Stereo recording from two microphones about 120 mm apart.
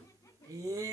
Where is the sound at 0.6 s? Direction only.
30° right (ahead or behind).